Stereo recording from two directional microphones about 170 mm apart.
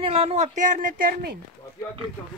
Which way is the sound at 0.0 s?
35° right (ahead or behind).